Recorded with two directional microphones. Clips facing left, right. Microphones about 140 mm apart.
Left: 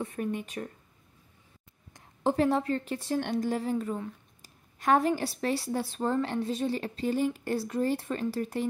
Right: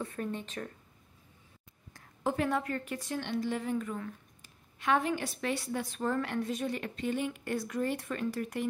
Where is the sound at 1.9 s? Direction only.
20° left (ahead or behind).